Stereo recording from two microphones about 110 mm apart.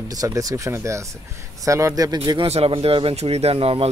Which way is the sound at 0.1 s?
35° right (ahead or behind).